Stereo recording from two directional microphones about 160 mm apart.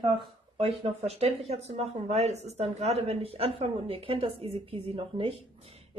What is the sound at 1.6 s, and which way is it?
Speech, 40° right (ahead or behind).